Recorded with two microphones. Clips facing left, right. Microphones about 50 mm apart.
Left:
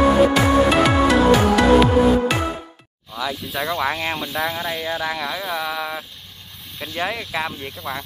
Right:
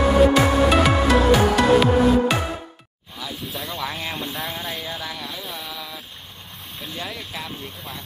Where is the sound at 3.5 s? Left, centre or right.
Left.